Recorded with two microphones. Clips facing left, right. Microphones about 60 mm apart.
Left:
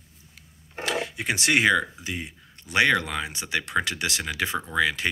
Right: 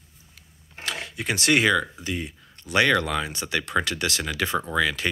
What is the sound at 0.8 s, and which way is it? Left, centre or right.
Speech, centre.